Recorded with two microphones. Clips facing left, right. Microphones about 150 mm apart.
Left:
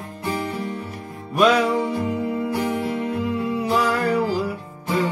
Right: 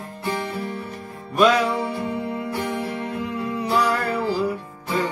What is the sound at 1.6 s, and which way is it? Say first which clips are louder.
Music: left 2 dB; centre (ahead or behind).